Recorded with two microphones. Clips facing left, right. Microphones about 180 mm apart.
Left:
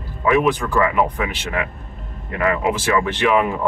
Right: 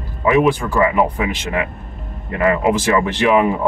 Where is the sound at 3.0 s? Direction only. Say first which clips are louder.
Right 3 dB; 15° right (ahead or behind).